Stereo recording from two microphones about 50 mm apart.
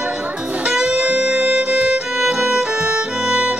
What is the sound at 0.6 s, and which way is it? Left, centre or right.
Music, centre.